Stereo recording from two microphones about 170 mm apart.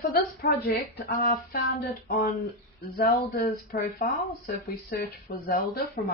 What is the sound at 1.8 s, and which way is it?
Speech, 65° left (ahead or behind).